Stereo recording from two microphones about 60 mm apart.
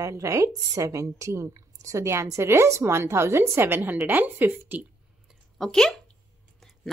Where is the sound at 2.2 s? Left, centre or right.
Right.